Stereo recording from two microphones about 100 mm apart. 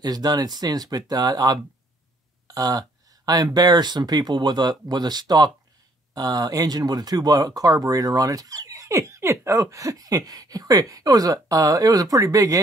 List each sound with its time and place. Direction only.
0.0 s speech: 40° right (ahead or behind)
2.4 s a sound: 35° right (ahead or behind)
3.5 s speech: 45° right (ahead or behind)